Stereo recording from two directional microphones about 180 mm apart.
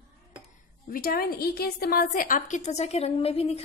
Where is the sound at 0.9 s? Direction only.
55° left (ahead or behind).